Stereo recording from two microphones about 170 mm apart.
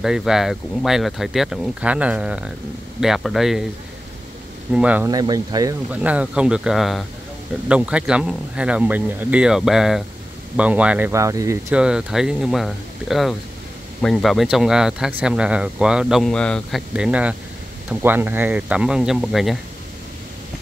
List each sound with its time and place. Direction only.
0.0 s speech: 5° right (ahead or behind)
4.7 s speech: 10° right (ahead or behind)
5.0 s speech: 20° right (ahead or behind)
5.9 s speech: 10° right (ahead or behind)
11.7 s speech: 5° right (ahead or behind)
16.9 s speech: 5° right (ahead or behind)